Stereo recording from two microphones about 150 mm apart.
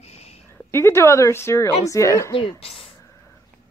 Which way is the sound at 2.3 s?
35° left (ahead or behind).